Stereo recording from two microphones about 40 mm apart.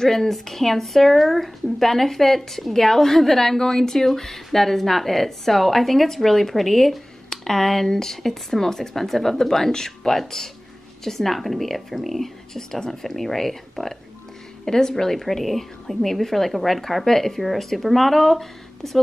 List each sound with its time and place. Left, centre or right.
0.0 s a woman's voice: centre